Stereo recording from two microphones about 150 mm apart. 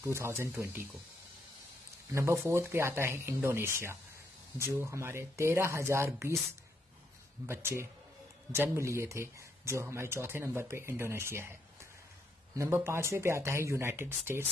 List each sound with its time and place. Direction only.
0.0 s speech: 20° right (ahead or behind)
2.1 s speech: 15° right (ahead or behind)
7.4 s speech: 15° right (ahead or behind)
12.5 s speech: 15° right (ahead or behind)